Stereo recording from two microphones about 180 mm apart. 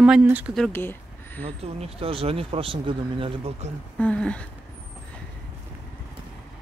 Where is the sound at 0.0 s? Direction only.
5° right (ahead or behind).